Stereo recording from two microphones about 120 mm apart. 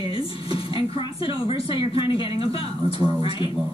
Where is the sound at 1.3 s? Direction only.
50° left (ahead or behind).